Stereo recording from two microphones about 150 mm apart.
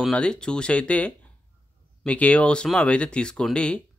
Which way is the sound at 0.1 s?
5° left (ahead or behind).